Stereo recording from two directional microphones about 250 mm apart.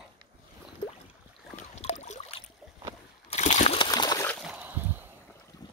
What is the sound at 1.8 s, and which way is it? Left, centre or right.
Rowboat, left.